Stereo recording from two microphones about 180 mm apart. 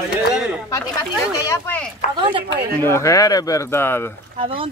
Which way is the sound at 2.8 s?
15° left (ahead or behind).